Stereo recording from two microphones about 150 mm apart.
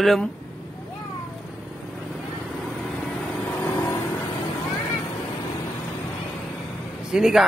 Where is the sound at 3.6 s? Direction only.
15° left (ahead or behind).